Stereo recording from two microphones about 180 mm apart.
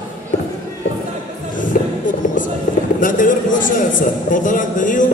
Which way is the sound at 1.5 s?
45° left (ahead or behind).